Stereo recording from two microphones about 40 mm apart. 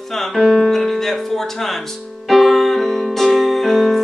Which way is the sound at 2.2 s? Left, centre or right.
Centre.